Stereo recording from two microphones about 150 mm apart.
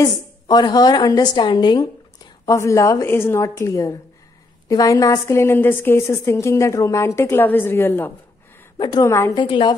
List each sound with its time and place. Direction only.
0.0 s a woman's voice: 30° left (ahead or behind)
8.7 s a woman's voice: 30° left (ahead or behind)
9.0 s a woman's voice: 15° left (ahead or behind)
9.4 s a woman's voice: 30° left (ahead or behind)